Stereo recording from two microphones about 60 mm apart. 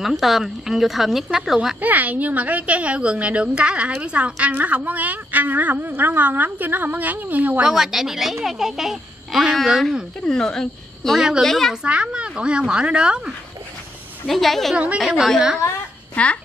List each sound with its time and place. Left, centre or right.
0.0 s a woman's voice: centre
1.8 s a woman's voice: right
7.6 s a woman's voice: centre
10.2 s a woman's voice: centre
11.1 s a woman's voice: centre
11.4 s a woman's voice: centre
11.7 s a woman's voice: centre
14.2 s a woman's voice: centre
15.3 s a woman's voice: centre
16.2 s a child's voice: left